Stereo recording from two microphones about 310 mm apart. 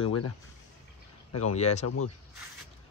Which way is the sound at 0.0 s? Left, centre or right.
Left.